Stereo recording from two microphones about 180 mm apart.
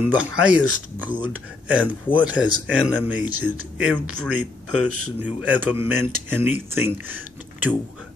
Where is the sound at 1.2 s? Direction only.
10° right (ahead or behind).